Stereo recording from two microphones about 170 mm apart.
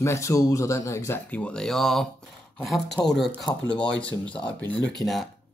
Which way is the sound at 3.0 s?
15° left (ahead or behind).